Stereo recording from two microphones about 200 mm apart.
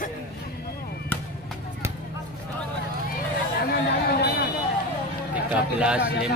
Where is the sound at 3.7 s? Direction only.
55° left (ahead or behind).